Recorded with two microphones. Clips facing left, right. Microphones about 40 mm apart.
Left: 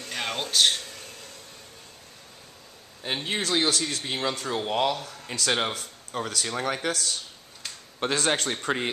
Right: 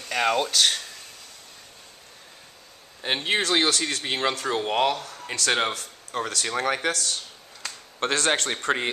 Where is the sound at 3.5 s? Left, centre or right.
Right.